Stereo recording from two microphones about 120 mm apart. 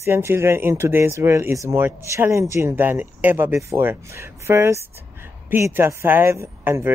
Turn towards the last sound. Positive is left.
turn(degrees=-20)  # may be behind; listen again after turning